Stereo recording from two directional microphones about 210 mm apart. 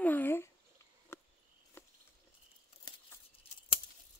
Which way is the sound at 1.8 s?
10° left (ahead or behind).